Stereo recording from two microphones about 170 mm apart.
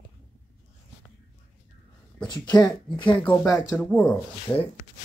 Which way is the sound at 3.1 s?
10° left (ahead or behind).